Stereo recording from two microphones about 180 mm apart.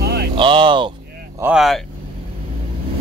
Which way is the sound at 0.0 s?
65° right (ahead or behind).